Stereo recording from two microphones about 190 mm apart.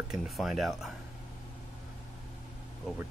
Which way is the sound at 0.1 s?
Centre (ahead or behind).